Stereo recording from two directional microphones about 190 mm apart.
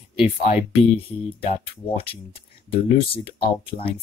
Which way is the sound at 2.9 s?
30° left (ahead or behind).